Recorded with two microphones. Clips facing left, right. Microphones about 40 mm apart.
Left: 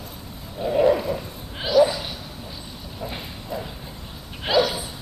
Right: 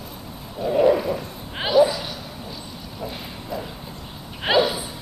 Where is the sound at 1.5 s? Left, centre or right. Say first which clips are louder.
Right 1 dB; right.